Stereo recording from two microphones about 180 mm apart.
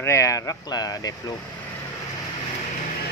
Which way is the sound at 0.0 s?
15° left (ahead or behind).